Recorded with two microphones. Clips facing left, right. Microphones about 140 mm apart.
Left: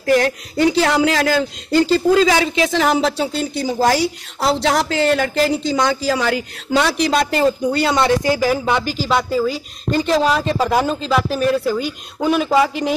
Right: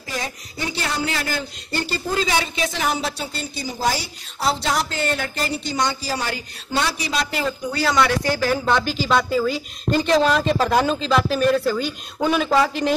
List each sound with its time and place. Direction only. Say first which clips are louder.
0.0 s speech: left 14 dB; 70° left (ahead or behind); by 7.5 s 45° left (ahead or behind)
7.7 s speech: left 4 dB; 25° left (ahead or behind); by 12.9 s 5° left (ahead or behind)